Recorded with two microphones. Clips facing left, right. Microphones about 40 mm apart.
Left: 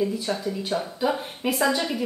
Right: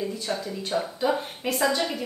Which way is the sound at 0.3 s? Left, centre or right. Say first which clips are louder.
Left 2 dB; centre.